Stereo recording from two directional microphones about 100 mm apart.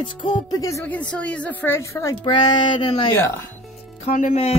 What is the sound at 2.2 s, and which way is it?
Speech, 50° left (ahead or behind).